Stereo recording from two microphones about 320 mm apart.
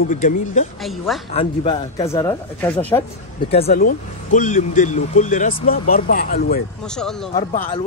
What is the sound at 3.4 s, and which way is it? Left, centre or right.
Speech, centre.